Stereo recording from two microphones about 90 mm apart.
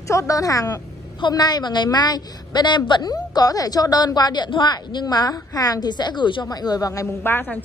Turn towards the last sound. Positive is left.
turn(degrees=25)  # may be behind; listen again after turning